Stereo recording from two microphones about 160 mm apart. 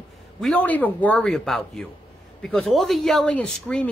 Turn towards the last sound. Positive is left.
turn(degrees=5)  # may be behind; listen again after turning